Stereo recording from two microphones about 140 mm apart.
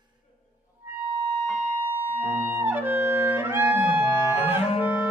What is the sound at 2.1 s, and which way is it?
Music, 15° right (ahead or behind).